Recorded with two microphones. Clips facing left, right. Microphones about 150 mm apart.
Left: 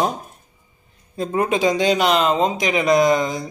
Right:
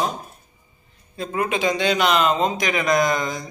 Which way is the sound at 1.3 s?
35° left (ahead or behind).